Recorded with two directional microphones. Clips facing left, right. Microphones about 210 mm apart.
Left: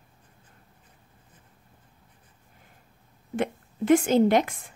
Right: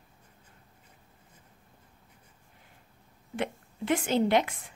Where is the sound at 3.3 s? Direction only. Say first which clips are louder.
Left 5 dB; 45° left (ahead or behind).